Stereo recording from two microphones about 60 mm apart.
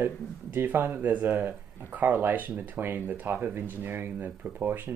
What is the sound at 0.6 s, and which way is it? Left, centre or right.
Speech, right.